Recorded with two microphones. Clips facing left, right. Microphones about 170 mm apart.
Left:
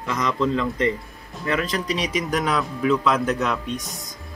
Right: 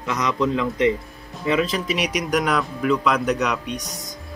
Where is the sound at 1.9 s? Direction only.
70° right (ahead or behind).